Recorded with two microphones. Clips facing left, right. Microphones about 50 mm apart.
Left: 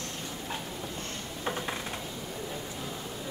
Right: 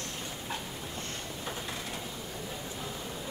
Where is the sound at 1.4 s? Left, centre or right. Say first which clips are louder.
Left 7 dB; left.